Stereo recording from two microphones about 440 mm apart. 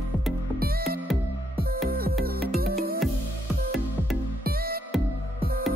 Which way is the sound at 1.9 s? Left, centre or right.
Centre.